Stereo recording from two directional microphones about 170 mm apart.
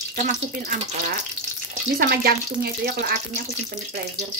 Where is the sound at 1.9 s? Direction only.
65° right (ahead or behind).